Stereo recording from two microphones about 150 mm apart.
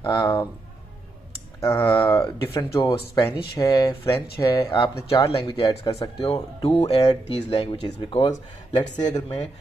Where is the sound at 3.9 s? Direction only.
35° left (ahead or behind).